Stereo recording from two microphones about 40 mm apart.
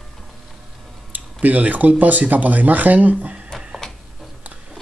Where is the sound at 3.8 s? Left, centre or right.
Centre.